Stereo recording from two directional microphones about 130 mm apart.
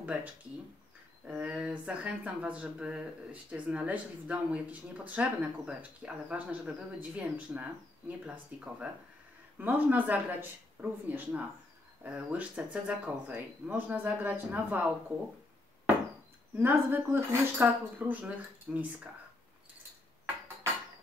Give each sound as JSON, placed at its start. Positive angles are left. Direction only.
{"t": 0.0, "sound": "speech", "side_deg": -10}
{"t": 16.5, "sound": "speech", "side_deg": -15}